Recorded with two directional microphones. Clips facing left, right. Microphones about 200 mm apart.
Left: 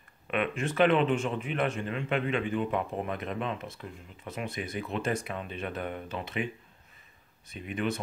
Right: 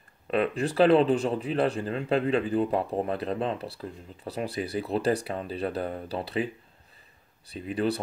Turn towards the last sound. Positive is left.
turn(degrees=-35)  # may be behind; listen again after turning